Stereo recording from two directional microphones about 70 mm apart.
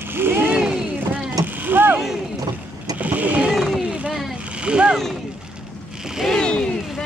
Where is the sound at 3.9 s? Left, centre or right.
Centre.